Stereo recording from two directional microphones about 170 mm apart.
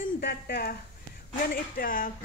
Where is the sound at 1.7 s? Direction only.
55° left (ahead or behind).